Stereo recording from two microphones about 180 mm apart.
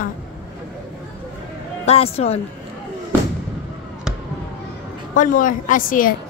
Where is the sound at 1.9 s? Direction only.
35° left (ahead or behind).